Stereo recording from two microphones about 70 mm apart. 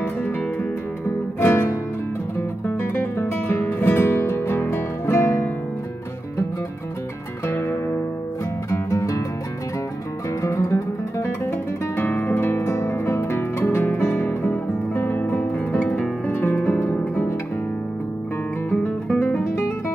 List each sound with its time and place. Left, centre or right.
1.4 s music: left
2.3 s guitar: left
7.4 s music: left
8.6 s music: left
10.4 s music: left
12.0 s music: left